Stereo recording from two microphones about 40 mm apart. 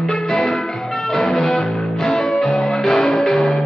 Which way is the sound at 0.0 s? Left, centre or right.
Centre.